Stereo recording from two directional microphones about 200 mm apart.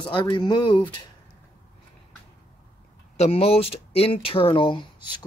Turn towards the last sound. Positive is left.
turn(degrees=25)  # may be behind; listen again after turning